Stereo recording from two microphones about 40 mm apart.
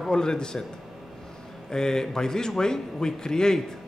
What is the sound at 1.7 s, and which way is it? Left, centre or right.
A man's voice, centre.